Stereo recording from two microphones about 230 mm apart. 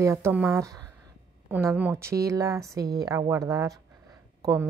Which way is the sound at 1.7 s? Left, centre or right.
Centre.